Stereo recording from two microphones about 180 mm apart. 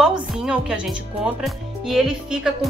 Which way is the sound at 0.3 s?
5° right (ahead or behind).